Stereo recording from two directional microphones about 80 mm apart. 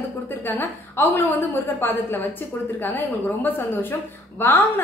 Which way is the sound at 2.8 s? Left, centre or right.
Left.